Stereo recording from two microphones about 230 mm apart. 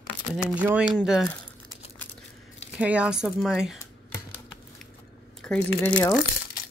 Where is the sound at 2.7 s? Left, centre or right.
Centre.